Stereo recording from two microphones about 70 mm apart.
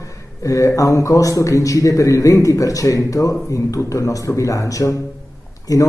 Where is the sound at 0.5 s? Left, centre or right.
Left.